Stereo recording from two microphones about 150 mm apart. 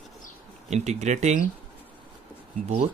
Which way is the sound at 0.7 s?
50° right (ahead or behind).